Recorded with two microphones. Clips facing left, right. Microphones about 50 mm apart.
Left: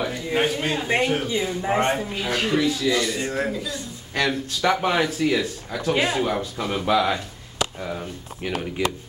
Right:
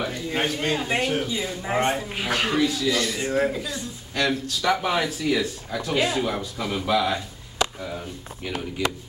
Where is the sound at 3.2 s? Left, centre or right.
Centre.